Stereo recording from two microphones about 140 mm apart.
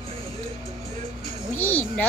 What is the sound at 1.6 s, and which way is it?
Speech, 15° left (ahead or behind).